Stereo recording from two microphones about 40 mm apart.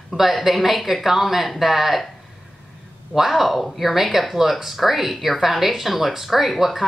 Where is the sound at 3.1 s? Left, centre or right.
Centre.